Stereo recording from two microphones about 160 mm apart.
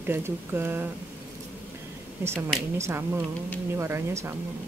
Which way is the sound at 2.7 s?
15° right (ahead or behind).